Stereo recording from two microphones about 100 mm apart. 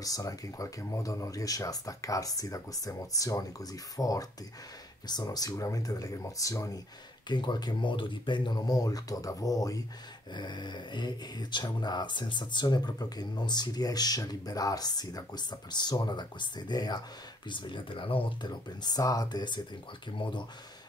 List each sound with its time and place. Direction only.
0.0 s speech: 35° left (ahead or behind)
7.2 s speech: 50° left (ahead or behind)
10.3 s speech: 50° left (ahead or behind)